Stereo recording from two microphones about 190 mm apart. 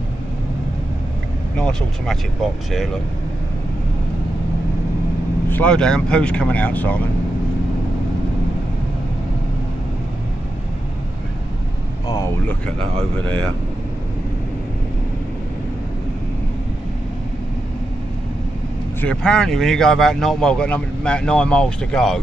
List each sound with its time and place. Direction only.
1.6 s speech: 5° left (ahead or behind)
5.5 s speech: 5° left (ahead or behind)
12.1 s speech: 10° left (ahead or behind)
18.9 s speech: 5° left (ahead or behind)